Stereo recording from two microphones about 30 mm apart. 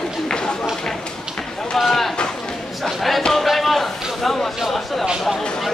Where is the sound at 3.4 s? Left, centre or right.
Centre.